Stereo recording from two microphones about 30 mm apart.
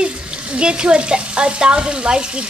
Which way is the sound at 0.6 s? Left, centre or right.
Right.